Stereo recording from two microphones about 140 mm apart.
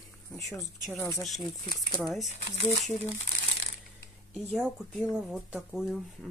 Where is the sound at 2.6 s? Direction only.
55° left (ahead or behind).